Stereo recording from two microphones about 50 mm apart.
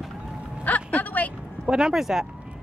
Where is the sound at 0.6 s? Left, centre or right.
Left.